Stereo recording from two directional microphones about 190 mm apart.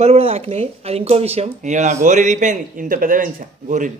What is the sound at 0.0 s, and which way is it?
A man's voice, 30° right (ahead or behind).